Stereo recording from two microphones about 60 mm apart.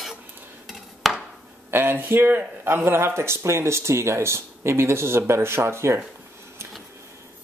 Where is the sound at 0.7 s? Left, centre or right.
Centre.